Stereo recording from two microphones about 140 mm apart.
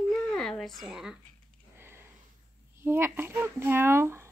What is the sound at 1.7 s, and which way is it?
Sniff, 15° right (ahead or behind).